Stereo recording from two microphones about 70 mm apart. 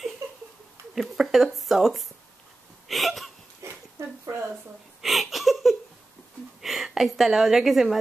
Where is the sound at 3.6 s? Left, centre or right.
Right.